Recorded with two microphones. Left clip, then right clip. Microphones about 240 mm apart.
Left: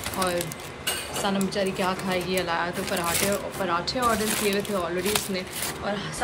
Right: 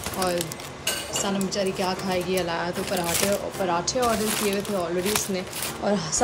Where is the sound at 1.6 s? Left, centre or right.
Centre.